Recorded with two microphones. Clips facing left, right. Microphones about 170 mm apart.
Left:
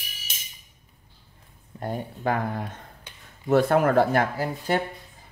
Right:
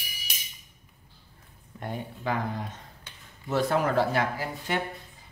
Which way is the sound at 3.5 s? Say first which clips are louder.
Left 6 dB; 55° left (ahead or behind).